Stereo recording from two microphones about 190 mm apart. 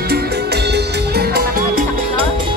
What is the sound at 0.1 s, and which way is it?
Music, 60° right (ahead or behind).